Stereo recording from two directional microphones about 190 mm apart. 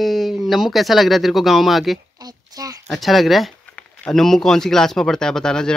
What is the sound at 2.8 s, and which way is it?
Speech, centre (ahead or behind).